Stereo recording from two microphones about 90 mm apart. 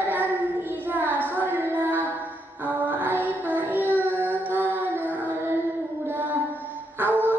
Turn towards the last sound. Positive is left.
turn(degrees=-20)  # may be behind; listen again after turning